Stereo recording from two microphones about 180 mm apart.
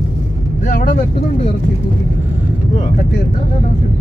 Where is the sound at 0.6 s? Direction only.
50° left (ahead or behind).